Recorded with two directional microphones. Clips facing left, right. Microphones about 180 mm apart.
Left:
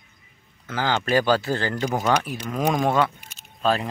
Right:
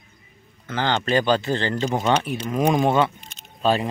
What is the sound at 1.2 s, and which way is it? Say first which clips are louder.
Speech: even; 20° right (ahead or behind).